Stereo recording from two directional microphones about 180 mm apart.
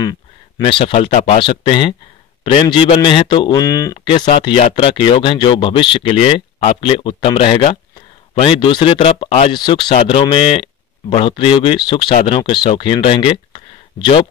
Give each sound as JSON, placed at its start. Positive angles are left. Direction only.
{"t": 0.6, "sound": "speech", "side_deg": 30}